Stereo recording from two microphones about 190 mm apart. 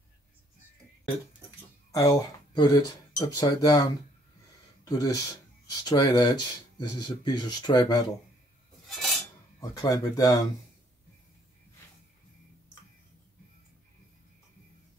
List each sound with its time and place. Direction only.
1.9 s speech: 15° left (ahead or behind)
4.8 s speech: 20° left (ahead or behind)
8.8 s cutlery: centre (ahead or behind)
9.6 s speech: 20° left (ahead or behind)